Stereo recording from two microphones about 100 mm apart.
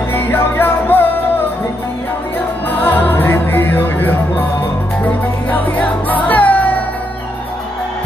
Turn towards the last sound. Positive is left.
turn(degrees=15)  # may be behind; listen again after turning